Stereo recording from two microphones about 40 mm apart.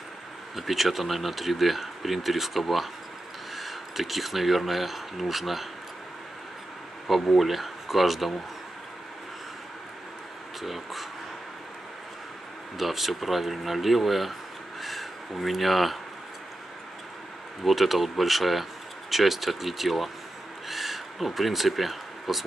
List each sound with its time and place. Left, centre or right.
0.6 s speech: centre
7.3 s speech: centre
10.6 s speech: centre
12.7 s speech: centre
17.6 s speech: centre
20.6 s a sound: centre